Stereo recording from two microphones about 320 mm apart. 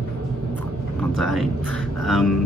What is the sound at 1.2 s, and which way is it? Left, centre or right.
Speech, centre.